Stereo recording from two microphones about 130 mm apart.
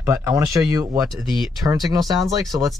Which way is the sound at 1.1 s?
Centre (ahead or behind).